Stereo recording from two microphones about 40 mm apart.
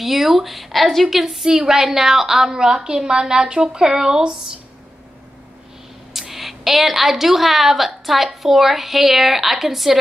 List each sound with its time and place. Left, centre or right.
0.0 s a woman's voice: centre
6.1 s a woman's voice: centre